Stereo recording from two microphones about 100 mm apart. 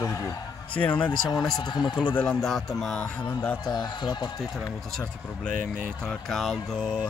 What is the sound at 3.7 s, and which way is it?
Speech, 45° left (ahead or behind).